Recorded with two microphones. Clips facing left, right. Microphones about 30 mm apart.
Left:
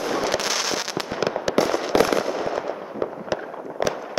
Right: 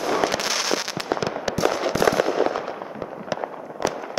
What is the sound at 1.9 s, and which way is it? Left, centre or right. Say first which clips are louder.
Fireworks: left 2 dB; left.